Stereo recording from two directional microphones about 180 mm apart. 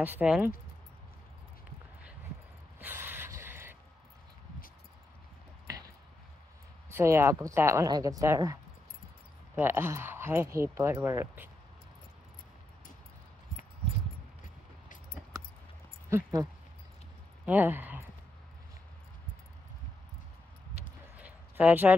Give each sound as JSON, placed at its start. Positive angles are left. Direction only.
{"t": 0.0, "sound": "speech", "side_deg": -10}
{"t": 2.8, "sound": "gasp", "side_deg": -10}
{"t": 6.9, "sound": "speech", "side_deg": -15}
{"t": 9.6, "sound": "speech", "side_deg": -15}
{"t": 16.1, "sound": "speech", "side_deg": -15}
{"t": 17.5, "sound": "speech", "side_deg": -10}
{"t": 21.2, "sound": "a sound", "side_deg": -10}